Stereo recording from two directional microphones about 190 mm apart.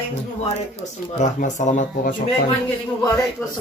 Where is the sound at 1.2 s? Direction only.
40° left (ahead or behind).